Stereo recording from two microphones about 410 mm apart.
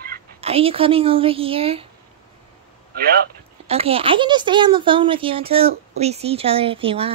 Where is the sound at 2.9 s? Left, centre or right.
Right.